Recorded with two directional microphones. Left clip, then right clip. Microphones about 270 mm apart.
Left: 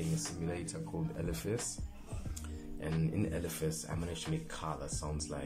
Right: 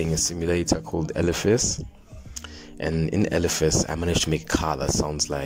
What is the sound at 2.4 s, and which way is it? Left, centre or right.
Music, right.